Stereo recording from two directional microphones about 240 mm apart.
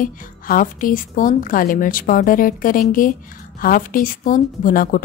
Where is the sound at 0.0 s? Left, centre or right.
Left.